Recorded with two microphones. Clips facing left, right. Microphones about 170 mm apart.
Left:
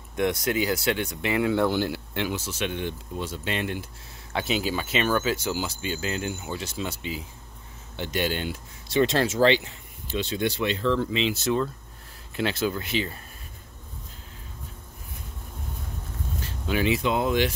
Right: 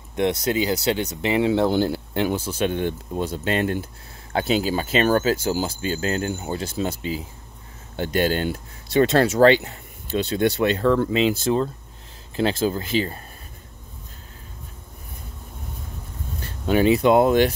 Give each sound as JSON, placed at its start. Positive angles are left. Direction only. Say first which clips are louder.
{"t": 0.1, "sound": "speech", "louder": "right 3 dB", "side_deg": -30}
{"t": 2.2, "sound": "speech", "louder": "right 7 dB", "side_deg": -50}
{"t": 8.9, "sound": "speech", "louder": "right 5 dB", "side_deg": -60}
{"t": 9.3, "sound": "speech", "louder": "right 5 dB", "side_deg": -45}
{"t": 11.4, "sound": "speech", "louder": "right 4 dB", "side_deg": -30}
{"t": 16.6, "sound": "speech", "louder": "right 8 dB", "side_deg": -45}